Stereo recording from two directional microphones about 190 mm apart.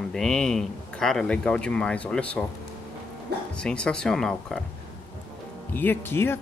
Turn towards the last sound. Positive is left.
turn(degrees=10)  # may be behind; listen again after turning